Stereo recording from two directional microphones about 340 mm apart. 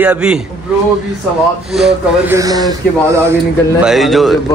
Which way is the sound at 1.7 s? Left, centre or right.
Centre.